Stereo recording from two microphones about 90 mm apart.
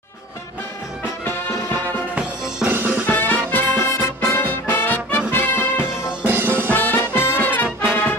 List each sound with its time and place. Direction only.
2.1 s music: 10° right (ahead or behind)
3.1 s music: 20° left (ahead or behind)
6.2 s music: 25° right (ahead or behind)
6.7 s music: 20° left (ahead or behind)
7.6 s brass instrument: 10° right (ahead or behind)